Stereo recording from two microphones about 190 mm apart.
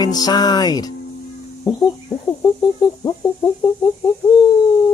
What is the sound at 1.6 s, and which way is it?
Bird, 20° left (ahead or behind).